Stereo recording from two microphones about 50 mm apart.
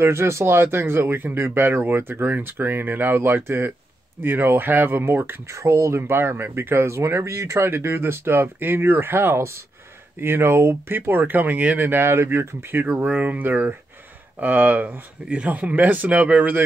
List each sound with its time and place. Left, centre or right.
0.0 s speech: right
5.5 s speech: right
6.9 s speech: right
13.0 s speech: right